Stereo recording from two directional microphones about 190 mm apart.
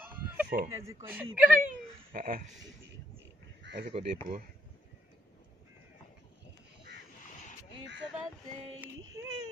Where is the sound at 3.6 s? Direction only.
60° right (ahead or behind).